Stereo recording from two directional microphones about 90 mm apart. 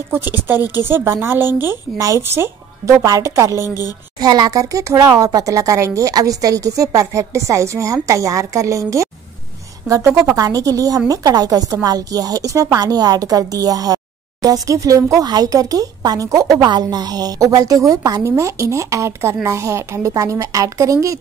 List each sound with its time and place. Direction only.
0.1 s speech: 25° right (ahead or behind)
2.0 s a woman's voice: 35° right (ahead or behind)
3.6 s a woman's voice: 40° left (ahead or behind)
4.2 s a woman's voice: 45° right (ahead or behind)